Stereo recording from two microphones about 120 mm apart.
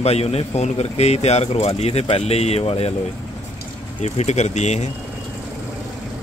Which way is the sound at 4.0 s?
70° left (ahead or behind).